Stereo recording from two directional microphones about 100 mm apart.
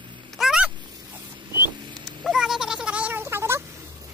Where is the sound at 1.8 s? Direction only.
50° right (ahead or behind).